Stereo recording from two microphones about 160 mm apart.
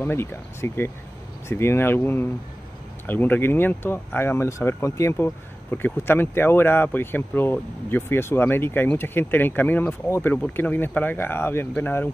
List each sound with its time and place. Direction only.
0.0 s speech: 15° left (ahead or behind)